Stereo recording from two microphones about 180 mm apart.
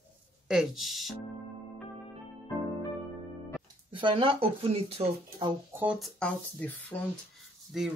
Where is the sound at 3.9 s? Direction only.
30° right (ahead or behind).